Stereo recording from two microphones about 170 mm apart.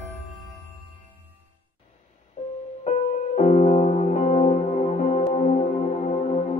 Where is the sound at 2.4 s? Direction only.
35° left (ahead or behind).